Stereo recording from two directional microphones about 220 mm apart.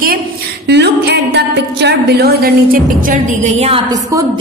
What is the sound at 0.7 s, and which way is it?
A woman's voice, 50° right (ahead or behind).